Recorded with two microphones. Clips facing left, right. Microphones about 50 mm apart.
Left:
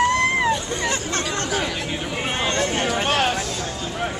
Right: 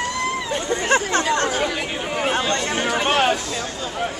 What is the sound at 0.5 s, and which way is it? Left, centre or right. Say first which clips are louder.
Chatter: right 4 dB; right.